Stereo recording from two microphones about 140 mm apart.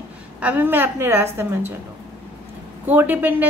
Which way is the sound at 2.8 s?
15° right (ahead or behind).